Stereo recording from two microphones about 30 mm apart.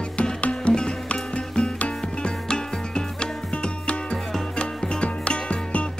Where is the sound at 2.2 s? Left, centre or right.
Left.